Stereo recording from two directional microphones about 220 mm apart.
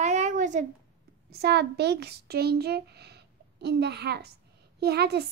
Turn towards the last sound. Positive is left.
turn(degrees=-45)  # may be behind; listen again after turning